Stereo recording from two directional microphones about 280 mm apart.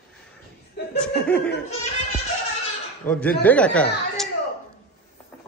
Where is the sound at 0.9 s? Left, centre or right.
Centre.